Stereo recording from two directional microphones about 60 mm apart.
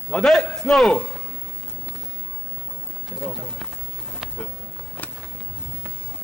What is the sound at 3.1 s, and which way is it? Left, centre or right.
Speech, centre.